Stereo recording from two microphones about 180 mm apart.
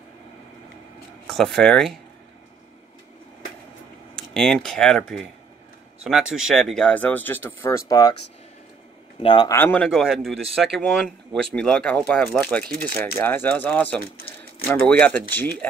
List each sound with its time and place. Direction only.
1.2 s speech: 5° left (ahead or behind)
4.2 s speech: 5° left (ahead or behind)
6.3 s speech: centre (ahead or behind); by 8.1 s 20° left (ahead or behind)
9.2 s speech: 25° left (ahead or behind)
9.6 s speech: 10° left (ahead or behind)